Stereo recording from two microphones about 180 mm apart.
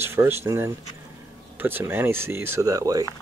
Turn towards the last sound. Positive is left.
turn(degrees=-20)  # may be behind; listen again after turning